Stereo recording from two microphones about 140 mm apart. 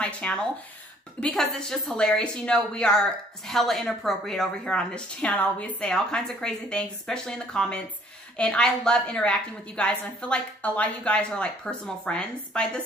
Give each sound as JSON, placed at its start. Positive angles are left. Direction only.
{"t": 0.0, "sound": "a woman's voice", "side_deg": 10}